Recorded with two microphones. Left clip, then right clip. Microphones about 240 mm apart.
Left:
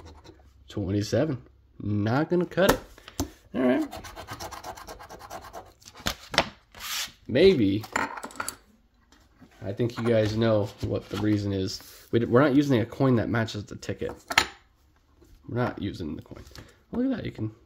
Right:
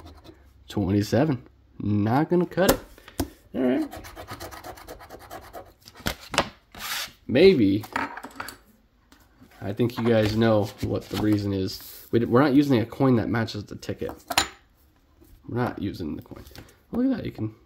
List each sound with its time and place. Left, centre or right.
0.0 s scratch: centre
5.5 s a sound: centre
7.2 s speech: centre
8.0 s coin: left
9.6 s speech: centre
15.5 s speech: centre